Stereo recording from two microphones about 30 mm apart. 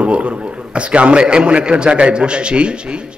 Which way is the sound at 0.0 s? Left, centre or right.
Right.